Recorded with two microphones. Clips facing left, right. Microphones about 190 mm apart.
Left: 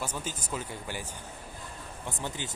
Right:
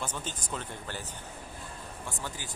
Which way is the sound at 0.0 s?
10° left (ahead or behind).